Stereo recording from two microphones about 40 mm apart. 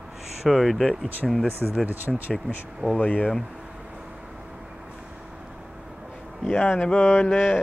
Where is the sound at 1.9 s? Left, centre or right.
Right.